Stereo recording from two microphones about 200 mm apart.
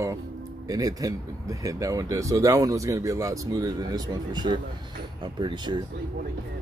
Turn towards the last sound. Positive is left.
turn(degrees=-20)  # may be behind; listen again after turning